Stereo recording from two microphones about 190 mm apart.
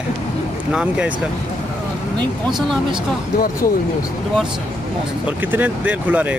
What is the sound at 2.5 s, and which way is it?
Speech, centre (ahead or behind).